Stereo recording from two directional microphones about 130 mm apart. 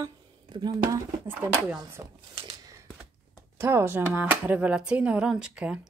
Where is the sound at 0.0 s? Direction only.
35° right (ahead or behind).